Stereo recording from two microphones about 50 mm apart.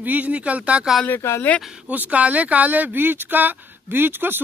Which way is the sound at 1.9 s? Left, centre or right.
Right.